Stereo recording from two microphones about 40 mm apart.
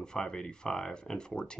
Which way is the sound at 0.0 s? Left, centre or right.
Centre.